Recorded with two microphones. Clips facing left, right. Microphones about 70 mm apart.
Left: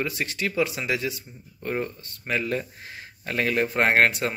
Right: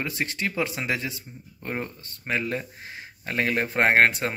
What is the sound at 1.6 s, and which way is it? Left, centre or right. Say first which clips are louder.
Speech: left 3 dB; right.